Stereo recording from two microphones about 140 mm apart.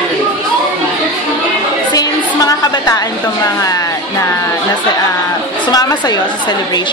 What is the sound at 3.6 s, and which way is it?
Speech, 25° left (ahead or behind).